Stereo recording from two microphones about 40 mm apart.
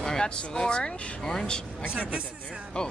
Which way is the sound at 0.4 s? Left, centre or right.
Centre.